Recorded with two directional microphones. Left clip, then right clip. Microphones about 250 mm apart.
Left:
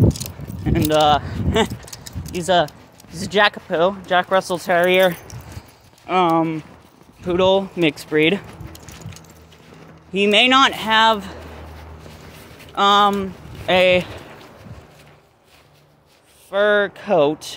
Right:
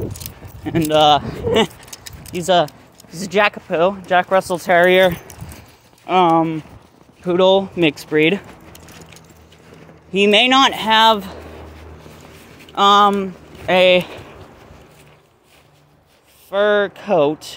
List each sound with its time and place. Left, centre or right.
0.7 s speech: centre
4.7 s speech: right; by 9.0 s centre
10.1 s speech: centre
12.7 s speech: centre
16.4 s speech: centre